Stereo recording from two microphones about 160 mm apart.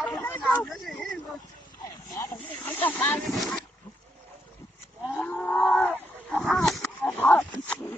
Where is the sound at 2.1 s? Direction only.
15° left (ahead or behind).